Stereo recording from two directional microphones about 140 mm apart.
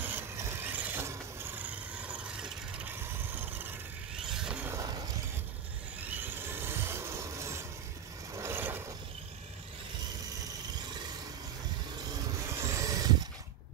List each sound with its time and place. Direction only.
0.0 s vehicle: 15° right (ahead or behind)
4.3 s vehicle: 5° right (ahead or behind)
4.6 s a sound: 25° right (ahead or behind)
6.6 s rub: 15° right (ahead or behind)
8.4 s vehicle: 15° right (ahead or behind)
12.1 s vehicle: 20° right (ahead or behind)